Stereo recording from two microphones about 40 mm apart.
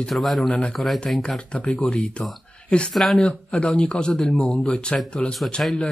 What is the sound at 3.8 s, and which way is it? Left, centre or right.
Speech, left.